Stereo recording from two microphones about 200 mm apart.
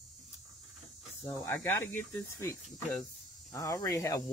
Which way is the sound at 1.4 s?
10° left (ahead or behind).